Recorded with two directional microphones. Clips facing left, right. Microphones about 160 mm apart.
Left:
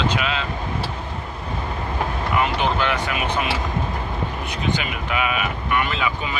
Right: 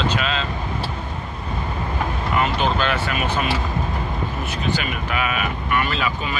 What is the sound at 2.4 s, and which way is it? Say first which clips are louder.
Speech: even; 15° left (ahead or behind).